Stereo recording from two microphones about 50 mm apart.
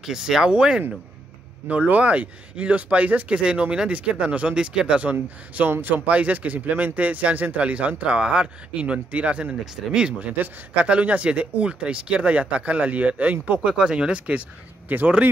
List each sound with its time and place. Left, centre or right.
0.0 s speech: centre
1.7 s speech: right
5.7 s speech: right
6.0 s speech: right
10.2 s speech: right
13.7 s speech: right
14.9 s speech: right